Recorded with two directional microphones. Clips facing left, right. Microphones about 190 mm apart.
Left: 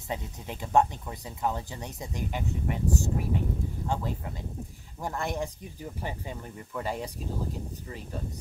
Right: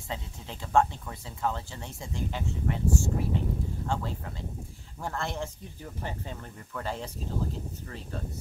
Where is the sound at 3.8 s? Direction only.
15° left (ahead or behind).